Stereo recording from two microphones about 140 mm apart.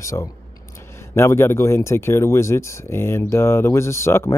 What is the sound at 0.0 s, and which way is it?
Speech, 20° left (ahead or behind).